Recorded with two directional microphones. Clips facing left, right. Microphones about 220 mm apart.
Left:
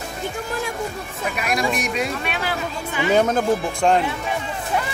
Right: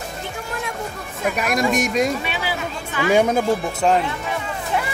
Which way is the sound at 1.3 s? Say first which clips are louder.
Right 3 dB; 45° right (ahead or behind).